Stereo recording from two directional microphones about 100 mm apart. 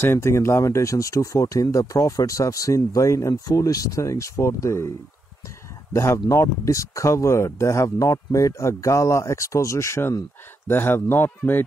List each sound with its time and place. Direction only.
0.0 s speech: 25° left (ahead or behind)
5.9 s speech: 30° left (ahead or behind)